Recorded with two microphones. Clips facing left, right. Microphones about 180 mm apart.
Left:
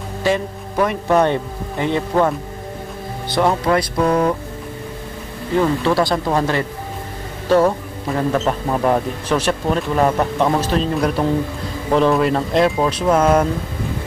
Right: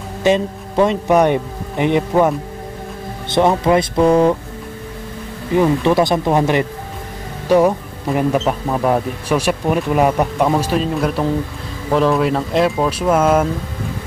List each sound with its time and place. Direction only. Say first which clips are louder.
0.2 s speech: right 4 dB; 20° right (ahead or behind)
5.5 s speech: right 3 dB; 15° right (ahead or behind)
8.6 s speech: right 1 dB; centre (ahead or behind)